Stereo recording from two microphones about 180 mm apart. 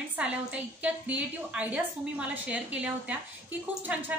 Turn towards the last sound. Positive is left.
turn(degrees=-10)  # may be behind; listen again after turning